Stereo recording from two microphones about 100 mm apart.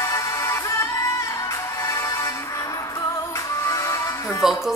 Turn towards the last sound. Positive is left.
turn(degrees=-5)  # may be behind; listen again after turning